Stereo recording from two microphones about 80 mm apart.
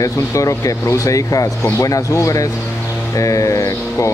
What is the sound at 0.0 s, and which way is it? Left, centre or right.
Speech, left.